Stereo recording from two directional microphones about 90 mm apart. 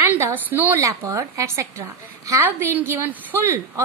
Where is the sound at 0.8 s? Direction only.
35° right (ahead or behind).